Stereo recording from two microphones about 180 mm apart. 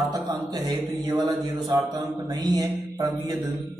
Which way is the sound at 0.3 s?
20° right (ahead or behind).